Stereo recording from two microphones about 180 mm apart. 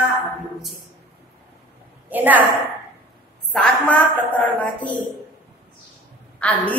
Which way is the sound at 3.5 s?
5° left (ahead or behind).